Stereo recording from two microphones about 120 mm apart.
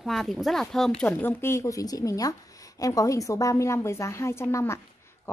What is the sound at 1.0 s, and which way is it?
A woman's voice, 15° left (ahead or behind).